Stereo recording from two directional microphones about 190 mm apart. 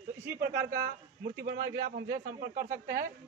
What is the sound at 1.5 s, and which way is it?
Speech, 55° right (ahead or behind).